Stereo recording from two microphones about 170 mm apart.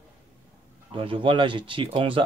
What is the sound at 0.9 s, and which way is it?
Speech, 30° right (ahead or behind).